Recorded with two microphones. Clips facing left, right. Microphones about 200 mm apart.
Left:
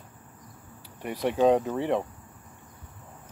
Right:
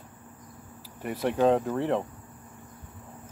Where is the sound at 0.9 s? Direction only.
Centre (ahead or behind).